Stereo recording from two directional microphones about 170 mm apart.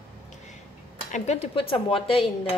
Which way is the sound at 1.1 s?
40° left (ahead or behind).